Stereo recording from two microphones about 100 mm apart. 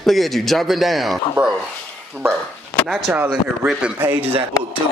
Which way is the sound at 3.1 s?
20° right (ahead or behind).